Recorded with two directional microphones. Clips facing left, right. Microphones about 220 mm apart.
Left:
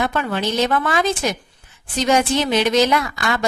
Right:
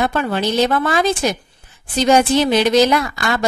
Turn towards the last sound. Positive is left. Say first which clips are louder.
# right 2 dB
turn(degrees=-35)  # may be behind; listen again after turning